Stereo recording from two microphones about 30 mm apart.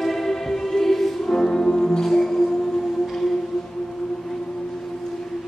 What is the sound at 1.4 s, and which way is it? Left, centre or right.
Music, left.